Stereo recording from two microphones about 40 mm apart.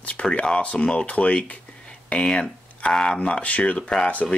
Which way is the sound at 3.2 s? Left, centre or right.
Left.